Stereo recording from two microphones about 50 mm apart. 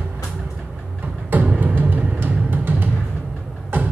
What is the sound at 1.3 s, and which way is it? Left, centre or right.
Music, right.